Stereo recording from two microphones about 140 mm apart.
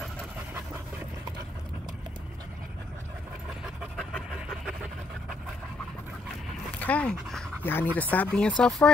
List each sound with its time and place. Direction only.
3.6 s pant: centre (ahead or behind)
6.8 s speech: 10° left (ahead or behind)